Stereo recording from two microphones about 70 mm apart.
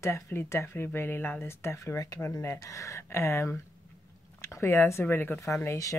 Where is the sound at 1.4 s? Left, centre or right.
Left.